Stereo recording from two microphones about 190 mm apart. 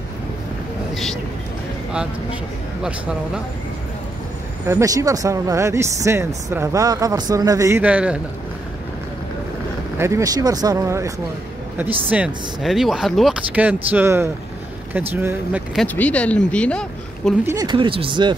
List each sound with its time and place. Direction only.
4.6 s speech: 15° right (ahead or behind)
9.9 s speech: 15° right (ahead or behind)
12.1 s speech: 5° right (ahead or behind)
17.5 s speech: 20° right (ahead or behind)